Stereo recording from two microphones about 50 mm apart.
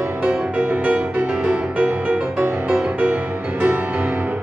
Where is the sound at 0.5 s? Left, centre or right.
Right.